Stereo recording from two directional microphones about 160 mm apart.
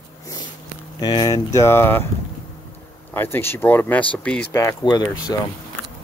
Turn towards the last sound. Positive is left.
turn(degrees=15)  # may be behind; listen again after turning